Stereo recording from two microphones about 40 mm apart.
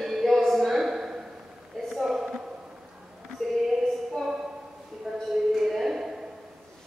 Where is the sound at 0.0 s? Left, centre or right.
Centre.